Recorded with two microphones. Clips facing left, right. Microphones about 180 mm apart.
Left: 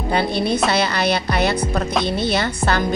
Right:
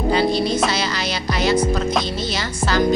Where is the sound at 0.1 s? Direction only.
55° left (ahead or behind).